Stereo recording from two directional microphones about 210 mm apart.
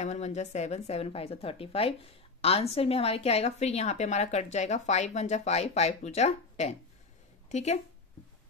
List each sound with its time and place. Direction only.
0.0 s a woman's voice: 35° left (ahead or behind)